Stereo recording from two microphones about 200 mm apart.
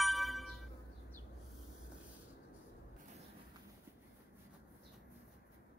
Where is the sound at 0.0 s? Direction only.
Centre (ahead or behind).